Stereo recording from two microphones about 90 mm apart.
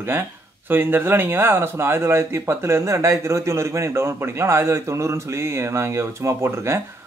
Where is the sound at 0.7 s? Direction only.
25° right (ahead or behind).